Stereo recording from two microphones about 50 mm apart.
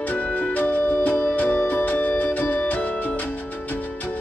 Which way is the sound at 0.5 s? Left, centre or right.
Left.